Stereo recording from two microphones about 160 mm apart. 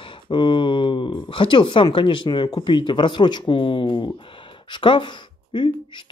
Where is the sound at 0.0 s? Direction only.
30° left (ahead or behind).